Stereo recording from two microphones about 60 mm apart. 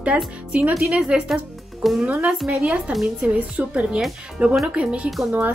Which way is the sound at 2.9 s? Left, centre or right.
Right.